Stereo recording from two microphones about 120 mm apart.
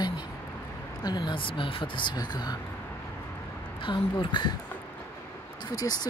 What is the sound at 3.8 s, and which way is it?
Speech, 40° left (ahead or behind).